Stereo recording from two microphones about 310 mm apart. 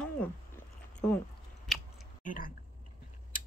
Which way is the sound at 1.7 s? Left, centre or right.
Centre.